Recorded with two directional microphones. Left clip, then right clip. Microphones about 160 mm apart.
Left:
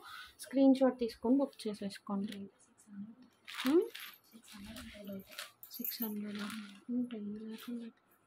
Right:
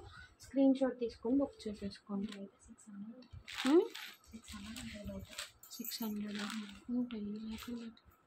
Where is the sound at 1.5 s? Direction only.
50° left (ahead or behind).